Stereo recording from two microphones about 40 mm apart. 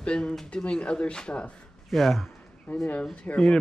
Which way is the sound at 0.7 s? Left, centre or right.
Left.